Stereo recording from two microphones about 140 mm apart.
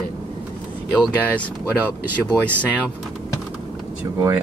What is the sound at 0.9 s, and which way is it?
Speech, 10° left (ahead or behind).